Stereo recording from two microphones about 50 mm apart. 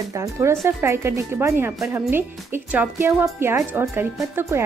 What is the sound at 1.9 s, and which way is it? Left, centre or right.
A woman's voice, right.